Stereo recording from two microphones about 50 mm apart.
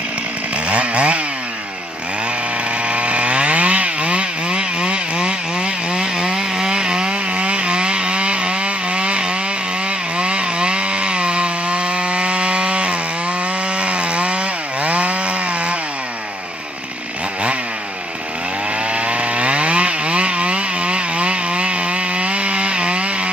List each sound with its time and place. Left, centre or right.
0.7 s chainsaw: right
2.9 s chainsaw: right
10.1 s wood: right
18.9 s chainsaw: right